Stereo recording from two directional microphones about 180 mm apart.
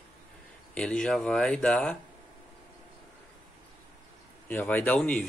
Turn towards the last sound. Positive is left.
turn(degrees=5)  # may be behind; listen again after turning